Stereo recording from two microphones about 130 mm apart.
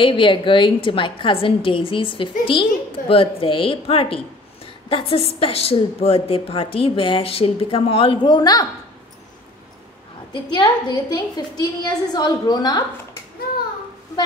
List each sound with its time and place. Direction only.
0.0 s a woman's voice: 40° left (ahead or behind)
10.3 s a woman's voice: 35° left (ahead or behind)